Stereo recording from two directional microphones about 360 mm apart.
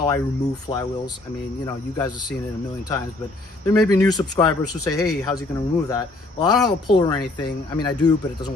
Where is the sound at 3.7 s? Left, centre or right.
Centre.